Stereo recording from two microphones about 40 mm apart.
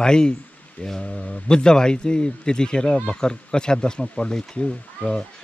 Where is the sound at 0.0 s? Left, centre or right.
Centre.